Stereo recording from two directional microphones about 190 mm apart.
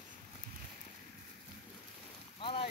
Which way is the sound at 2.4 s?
30° left (ahead or behind).